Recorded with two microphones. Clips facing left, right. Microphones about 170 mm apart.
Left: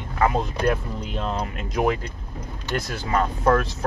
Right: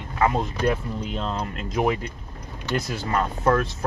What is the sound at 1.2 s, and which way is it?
Speech, 10° left (ahead or behind).